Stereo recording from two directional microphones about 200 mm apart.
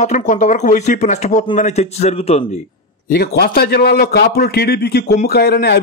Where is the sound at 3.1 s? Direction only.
50° left (ahead or behind).